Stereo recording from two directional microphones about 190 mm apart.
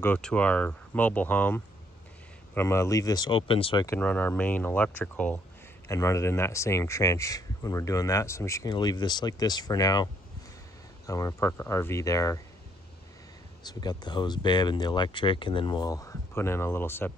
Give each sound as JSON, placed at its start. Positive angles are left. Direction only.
{"t": 0.0, "sound": "speech", "side_deg": 5}
{"t": 3.8, "sound": "speech", "side_deg": 10}
{"t": 11.1, "sound": "speech", "side_deg": 15}
{"t": 13.7, "sound": "speech", "side_deg": 20}